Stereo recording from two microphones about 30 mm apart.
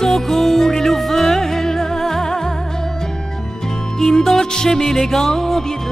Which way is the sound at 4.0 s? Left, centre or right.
Centre.